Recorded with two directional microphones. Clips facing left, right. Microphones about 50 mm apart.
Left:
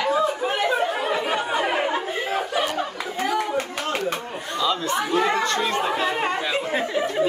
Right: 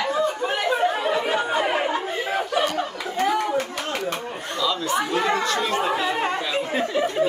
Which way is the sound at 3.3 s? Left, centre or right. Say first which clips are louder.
Right 1 dB; centre.